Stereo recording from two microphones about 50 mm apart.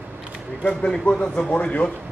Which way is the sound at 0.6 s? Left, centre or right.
Centre.